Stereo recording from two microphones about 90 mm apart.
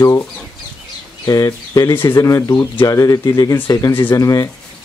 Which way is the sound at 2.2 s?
35° left (ahead or behind).